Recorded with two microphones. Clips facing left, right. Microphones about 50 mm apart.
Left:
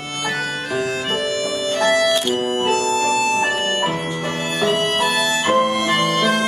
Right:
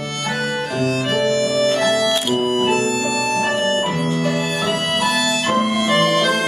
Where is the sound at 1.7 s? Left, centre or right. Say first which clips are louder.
Even; centre.